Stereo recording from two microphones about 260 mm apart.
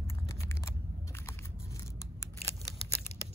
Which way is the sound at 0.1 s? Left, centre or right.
Centre.